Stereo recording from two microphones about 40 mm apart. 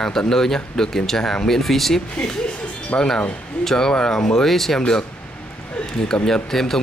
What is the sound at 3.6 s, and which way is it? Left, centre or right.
Speech, centre.